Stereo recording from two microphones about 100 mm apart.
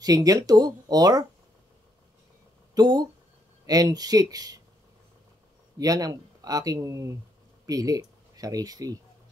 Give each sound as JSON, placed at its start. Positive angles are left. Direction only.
{"t": 0.0, "sound": "speech", "side_deg": -35}
{"t": 2.7, "sound": "speech", "side_deg": -40}
{"t": 5.8, "sound": "speech", "side_deg": -40}